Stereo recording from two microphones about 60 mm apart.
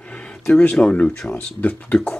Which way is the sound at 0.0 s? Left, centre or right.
Centre.